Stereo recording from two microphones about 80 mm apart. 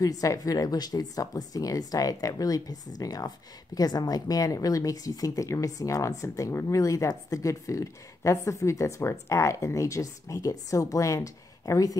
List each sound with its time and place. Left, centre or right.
0.0 s speech: left